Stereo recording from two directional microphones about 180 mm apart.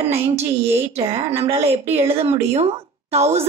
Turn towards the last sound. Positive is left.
turn(degrees=-35)  # may be behind; listen again after turning